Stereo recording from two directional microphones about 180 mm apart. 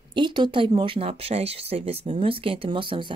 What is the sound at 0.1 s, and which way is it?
Speech, 25° right (ahead or behind).